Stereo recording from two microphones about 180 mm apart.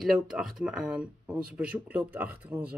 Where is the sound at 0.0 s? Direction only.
Centre (ahead or behind).